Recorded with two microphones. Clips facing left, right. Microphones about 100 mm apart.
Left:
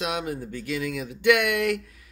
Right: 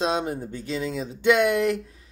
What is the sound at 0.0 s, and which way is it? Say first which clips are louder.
Speech: right 4 dB; 30° right (ahead or behind).